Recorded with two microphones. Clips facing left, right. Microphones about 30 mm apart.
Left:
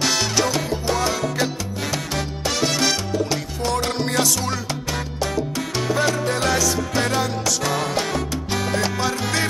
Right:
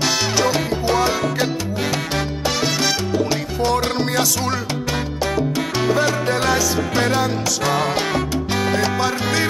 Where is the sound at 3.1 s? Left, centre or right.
Centre.